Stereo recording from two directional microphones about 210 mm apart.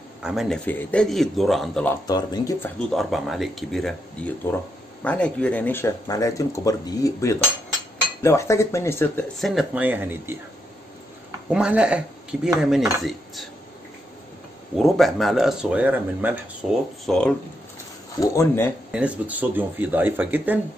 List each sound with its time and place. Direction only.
0.2 s speech: centre (ahead or behind)
2.0 s speech: 20° left (ahead or behind)
2.9 s speech: centre (ahead or behind)
9.5 s speech: 5° right (ahead or behind)
11.5 s speech: 5° right (ahead or behind)
14.8 s speech: centre (ahead or behind)
18.2 s speech: 15° left (ahead or behind)
18.9 s speech: 5° right (ahead or behind)